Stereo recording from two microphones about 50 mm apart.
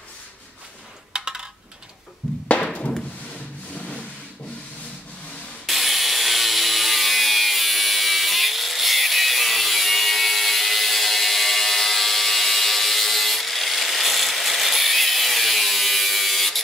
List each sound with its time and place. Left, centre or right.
1.1 s coin: centre
2.6 s music: centre
5.7 s wood: centre